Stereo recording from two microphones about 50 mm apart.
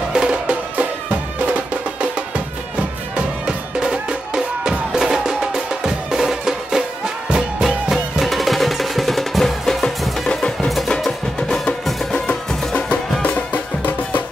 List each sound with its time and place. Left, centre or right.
0.1 s music: right; by 14.2 s left